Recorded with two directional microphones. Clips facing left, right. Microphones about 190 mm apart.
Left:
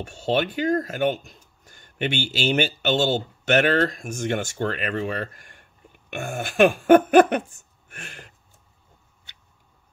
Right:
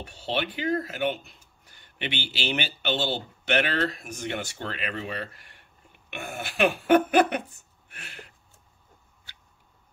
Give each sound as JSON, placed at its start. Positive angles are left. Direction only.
{"t": 0.0, "sound": "speech", "side_deg": 45}